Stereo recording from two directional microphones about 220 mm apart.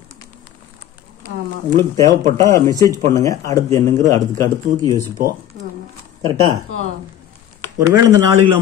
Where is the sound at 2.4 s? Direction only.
15° left (ahead or behind).